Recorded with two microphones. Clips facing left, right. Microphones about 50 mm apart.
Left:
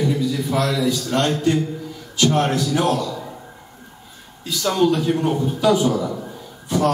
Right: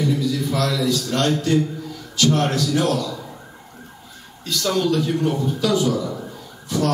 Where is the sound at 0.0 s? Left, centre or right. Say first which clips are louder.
Even; centre.